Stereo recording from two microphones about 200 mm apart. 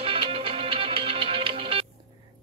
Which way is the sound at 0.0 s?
25° right (ahead or behind).